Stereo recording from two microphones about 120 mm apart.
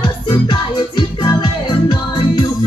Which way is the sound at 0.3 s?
40° left (ahead or behind).